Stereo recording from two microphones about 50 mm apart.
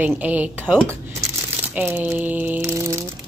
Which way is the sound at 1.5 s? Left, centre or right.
Right.